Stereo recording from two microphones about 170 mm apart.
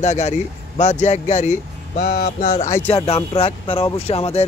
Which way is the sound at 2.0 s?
50° left (ahead or behind).